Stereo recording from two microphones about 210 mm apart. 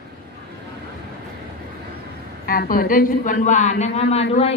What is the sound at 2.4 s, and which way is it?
A man's voice, 45° left (ahead or behind).